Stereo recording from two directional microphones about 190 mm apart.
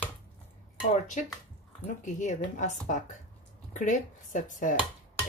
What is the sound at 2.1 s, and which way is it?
Speech, 40° left (ahead or behind).